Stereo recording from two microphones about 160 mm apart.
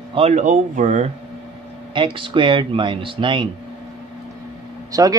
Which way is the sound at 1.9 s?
30° right (ahead or behind).